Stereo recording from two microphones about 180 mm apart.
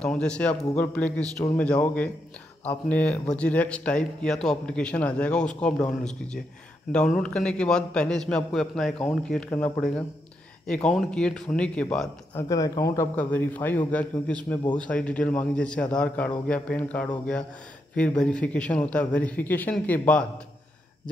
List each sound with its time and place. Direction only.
0.0 s a man's voice: 5° left (ahead or behind)
12.4 s a man's voice: 20° left (ahead or behind)